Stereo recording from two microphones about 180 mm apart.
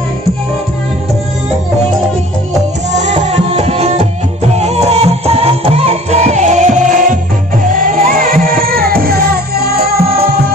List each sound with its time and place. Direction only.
3.3 s music: 35° right (ahead or behind); by 10.2 s 60° right (ahead or behind)